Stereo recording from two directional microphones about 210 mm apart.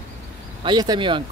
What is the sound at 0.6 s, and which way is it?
Speech, 20° right (ahead or behind).